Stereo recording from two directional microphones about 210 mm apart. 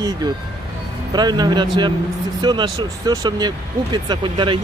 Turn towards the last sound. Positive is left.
turn(degrees=-25)  # may be behind; listen again after turning